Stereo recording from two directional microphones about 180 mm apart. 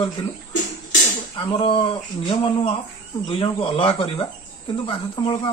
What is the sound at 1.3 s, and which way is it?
Speech, 30° left (ahead or behind).